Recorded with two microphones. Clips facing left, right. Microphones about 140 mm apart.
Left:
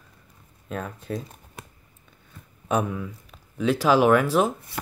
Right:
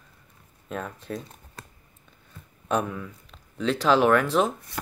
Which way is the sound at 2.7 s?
5° left (ahead or behind).